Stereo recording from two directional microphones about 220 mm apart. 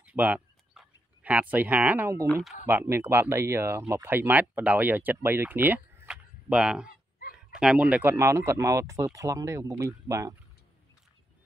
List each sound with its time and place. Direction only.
0.0 s a sound: 5° right (ahead or behind)
2.6 s speech: 10° right (ahead or behind)
6.9 s dog: 40° left (ahead or behind)
7.3 s speech: 5° right (ahead or behind)